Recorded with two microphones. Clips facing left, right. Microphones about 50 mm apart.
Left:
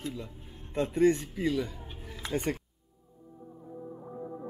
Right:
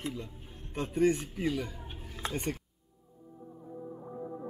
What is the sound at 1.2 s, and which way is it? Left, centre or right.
Speech, right.